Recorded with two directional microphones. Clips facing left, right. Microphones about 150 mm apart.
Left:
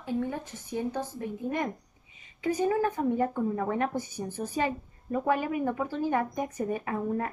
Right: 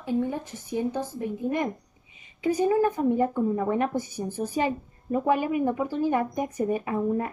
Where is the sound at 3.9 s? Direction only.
35° right (ahead or behind).